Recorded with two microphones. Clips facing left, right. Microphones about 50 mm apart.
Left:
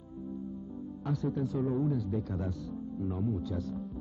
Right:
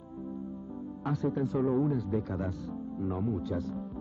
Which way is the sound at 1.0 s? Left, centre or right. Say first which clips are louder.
Right 2 dB; right.